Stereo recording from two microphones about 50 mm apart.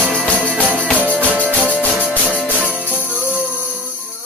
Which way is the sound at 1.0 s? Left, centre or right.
Right.